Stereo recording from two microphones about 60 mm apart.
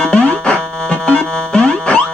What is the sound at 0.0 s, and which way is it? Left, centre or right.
Music, centre.